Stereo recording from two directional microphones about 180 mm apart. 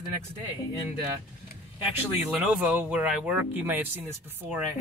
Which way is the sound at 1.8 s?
10° right (ahead or behind).